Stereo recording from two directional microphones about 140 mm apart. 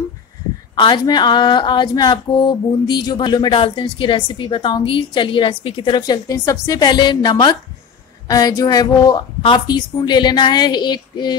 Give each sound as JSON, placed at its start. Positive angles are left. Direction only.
{"t": 0.7, "sound": "speech", "side_deg": 35}